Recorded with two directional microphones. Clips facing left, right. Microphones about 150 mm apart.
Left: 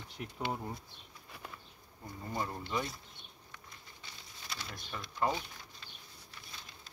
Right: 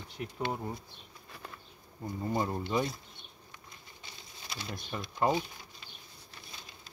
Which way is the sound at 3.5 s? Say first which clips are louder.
Even; 20° right (ahead or behind).